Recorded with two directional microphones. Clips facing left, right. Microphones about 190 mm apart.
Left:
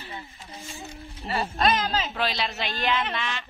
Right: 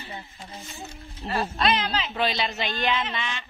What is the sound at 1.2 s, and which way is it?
Speech, 5° left (ahead or behind).